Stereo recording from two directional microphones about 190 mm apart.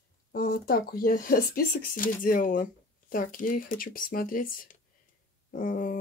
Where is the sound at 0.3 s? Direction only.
50° left (ahead or behind).